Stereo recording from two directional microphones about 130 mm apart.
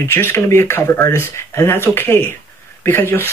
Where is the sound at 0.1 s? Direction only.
20° left (ahead or behind).